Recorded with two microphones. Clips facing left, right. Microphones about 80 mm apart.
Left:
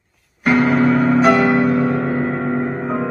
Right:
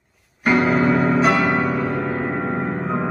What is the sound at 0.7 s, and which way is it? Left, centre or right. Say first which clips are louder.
Keyboard: left 3 dB; centre.